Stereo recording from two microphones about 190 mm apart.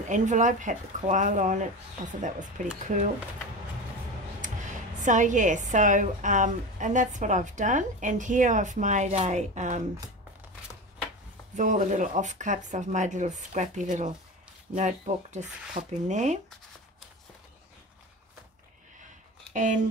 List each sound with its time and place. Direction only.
0.1 s speech: 40° right (ahead or behind)
4.4 s speech: 40° right (ahead or behind)
11.5 s speech: 40° right (ahead or behind)
19.5 s speech: 40° right (ahead or behind)